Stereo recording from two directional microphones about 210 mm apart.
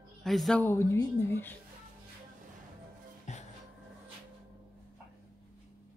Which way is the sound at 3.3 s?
35° left (ahead or behind).